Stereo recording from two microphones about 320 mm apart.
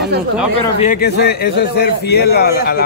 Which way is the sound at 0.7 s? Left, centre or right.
Left.